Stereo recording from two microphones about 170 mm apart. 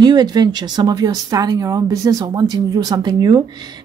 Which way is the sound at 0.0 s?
25° right (ahead or behind).